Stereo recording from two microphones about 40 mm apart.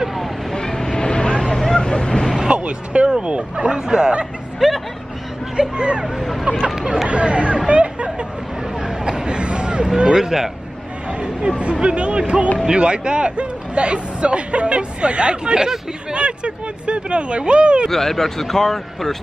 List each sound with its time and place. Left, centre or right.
0.0 s vehicle: centre
0.6 s vehicle: centre
2.4 s a sound: right
3.2 s speech: right
4.6 s hubbub: centre
5.6 s speech: right
7.1 s speech: right
8.7 s a sound: centre
9.9 s speech: centre
11.1 s speech: right
17.8 s speech: centre